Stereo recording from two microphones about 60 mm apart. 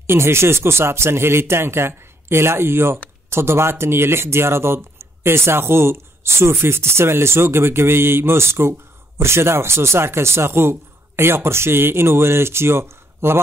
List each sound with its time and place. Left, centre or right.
0.0 s speech: right